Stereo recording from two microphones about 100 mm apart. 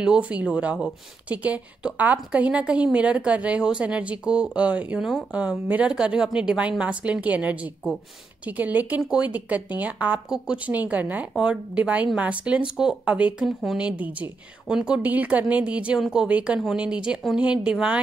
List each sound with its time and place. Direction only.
0.0 s speech: 10° right (ahead or behind)